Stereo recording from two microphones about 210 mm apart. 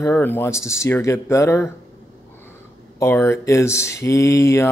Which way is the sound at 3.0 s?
10° left (ahead or behind).